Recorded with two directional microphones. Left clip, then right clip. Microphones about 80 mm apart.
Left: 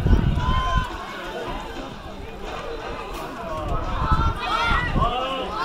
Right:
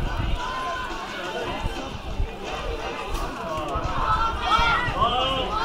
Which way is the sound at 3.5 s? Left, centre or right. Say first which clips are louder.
Right 1 dB; right.